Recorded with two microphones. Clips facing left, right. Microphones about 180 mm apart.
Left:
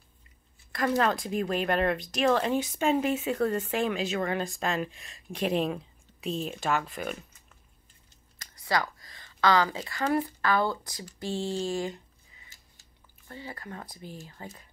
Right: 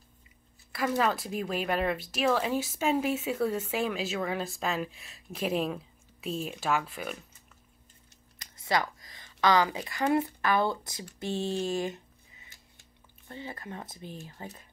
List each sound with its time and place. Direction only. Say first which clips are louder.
0.7 s speech: left 2 dB; 5° right (ahead or behind)
8.4 s speech: even; 20° right (ahead or behind)
12.5 s chewing: right 2 dB; 55° right (ahead or behind)
13.3 s speech: right 1 dB; 20° right (ahead or behind)